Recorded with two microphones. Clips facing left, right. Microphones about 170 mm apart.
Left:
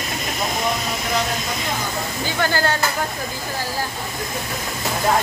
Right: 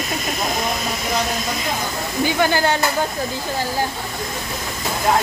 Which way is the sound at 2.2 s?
15° right (ahead or behind).